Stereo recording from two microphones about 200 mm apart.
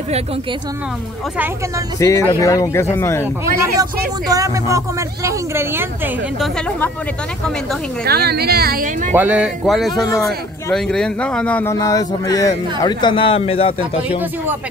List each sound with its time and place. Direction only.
2.0 s a man's voice: 15° left (ahead or behind)
4.3 s speech: 15° right (ahead or behind)
8.0 s speech: 50° right (ahead or behind)
9.1 s a man's voice: 10° right (ahead or behind); by 13.7 s 30° left (ahead or behind)